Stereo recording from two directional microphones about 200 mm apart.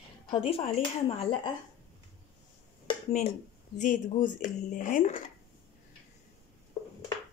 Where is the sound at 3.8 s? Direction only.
40° left (ahead or behind).